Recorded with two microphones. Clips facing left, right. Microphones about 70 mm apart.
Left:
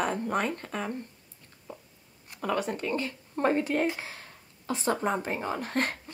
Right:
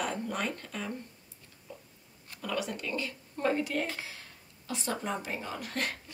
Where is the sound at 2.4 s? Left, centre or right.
Left.